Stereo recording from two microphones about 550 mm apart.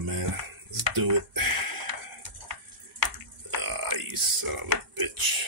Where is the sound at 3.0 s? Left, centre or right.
Right.